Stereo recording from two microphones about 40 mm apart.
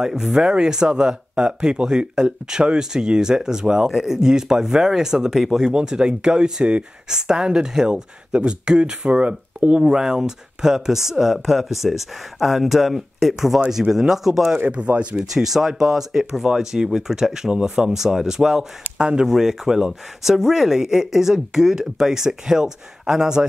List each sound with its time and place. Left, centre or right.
0.0 s speech: centre
9.8 s speech: centre
14.7 s speech: right
15.1 s speech: centre
18.9 s speech: right
19.2 s speech: centre